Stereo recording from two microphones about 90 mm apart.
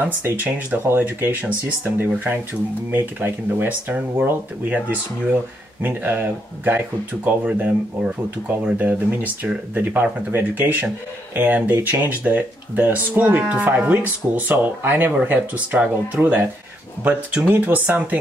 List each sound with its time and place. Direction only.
0.2 s speech: 20° right (ahead or behind)